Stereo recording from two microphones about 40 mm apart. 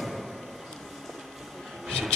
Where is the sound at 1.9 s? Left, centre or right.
Left.